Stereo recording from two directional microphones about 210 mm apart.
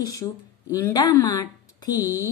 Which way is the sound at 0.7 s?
15° left (ahead or behind).